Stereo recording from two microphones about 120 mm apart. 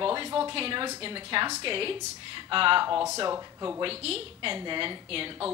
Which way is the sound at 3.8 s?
55° right (ahead or behind).